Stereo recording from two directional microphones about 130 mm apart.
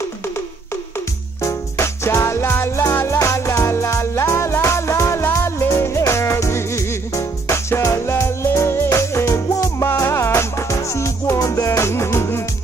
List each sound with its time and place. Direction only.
1.4 s music: 20° left (ahead or behind)